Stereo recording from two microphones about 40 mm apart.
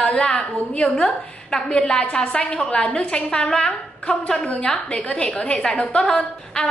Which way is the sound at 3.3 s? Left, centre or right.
Centre.